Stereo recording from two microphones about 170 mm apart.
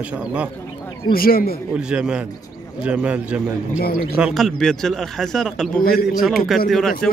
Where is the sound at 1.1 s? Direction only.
60° left (ahead or behind).